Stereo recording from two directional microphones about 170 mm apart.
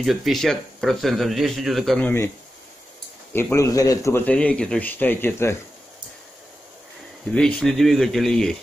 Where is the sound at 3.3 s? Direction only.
15° left (ahead or behind).